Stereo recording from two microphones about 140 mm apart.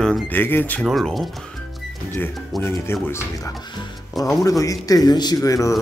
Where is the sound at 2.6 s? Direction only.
15° left (ahead or behind).